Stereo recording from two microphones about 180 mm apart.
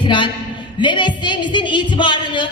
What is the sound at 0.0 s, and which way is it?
A man's voice, 25° left (ahead or behind).